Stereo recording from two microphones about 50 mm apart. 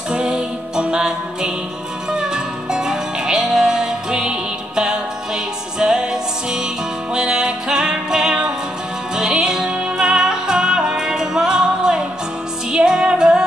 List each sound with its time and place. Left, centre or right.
0.1 s music: centre
7.2 s music: centre